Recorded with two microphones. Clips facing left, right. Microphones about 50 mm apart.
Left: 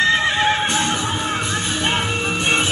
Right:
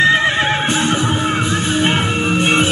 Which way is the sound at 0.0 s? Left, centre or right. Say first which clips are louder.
Right 3 dB; centre.